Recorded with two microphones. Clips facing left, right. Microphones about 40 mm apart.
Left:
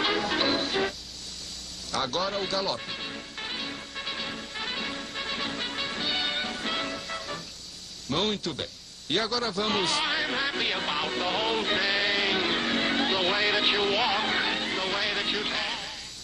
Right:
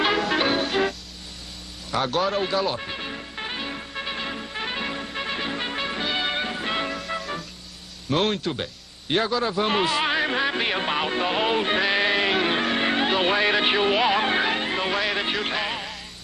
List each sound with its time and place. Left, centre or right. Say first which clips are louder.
0.0 s music: right 4 dB; centre; by 7.0 s right
7.2 s music: right 5 dB; centre
8.1 s speech: right 5 dB; centre
9.1 s music: right 5 dB; right